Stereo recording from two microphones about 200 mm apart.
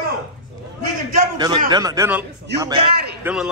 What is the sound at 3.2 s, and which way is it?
Speech, 5° right (ahead or behind).